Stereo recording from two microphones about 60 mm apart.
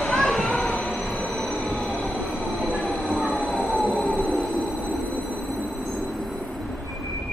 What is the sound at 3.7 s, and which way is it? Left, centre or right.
Train, left.